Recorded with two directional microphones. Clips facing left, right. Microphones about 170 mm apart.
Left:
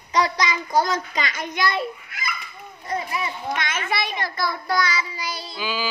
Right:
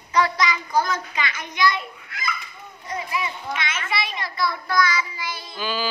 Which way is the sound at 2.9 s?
35° left (ahead or behind).